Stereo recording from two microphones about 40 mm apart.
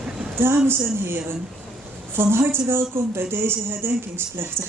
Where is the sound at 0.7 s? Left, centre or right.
Right.